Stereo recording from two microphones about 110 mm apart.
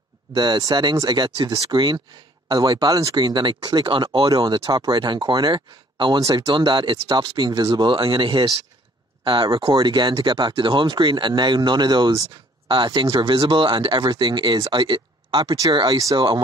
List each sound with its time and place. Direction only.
0.3 s speech: 35° right (ahead or behind)